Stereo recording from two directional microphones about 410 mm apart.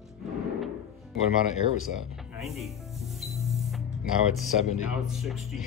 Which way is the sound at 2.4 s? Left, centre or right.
Centre.